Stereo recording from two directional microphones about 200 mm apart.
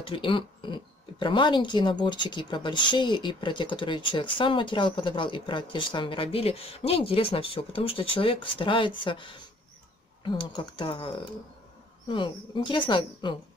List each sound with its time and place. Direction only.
0.1 s speech: 25° left (ahead or behind)